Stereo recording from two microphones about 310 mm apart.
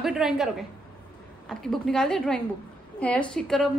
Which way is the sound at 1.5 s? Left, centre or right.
Centre.